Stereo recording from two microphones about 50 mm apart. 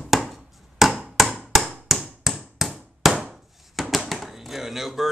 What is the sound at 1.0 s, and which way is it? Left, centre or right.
Chop, centre.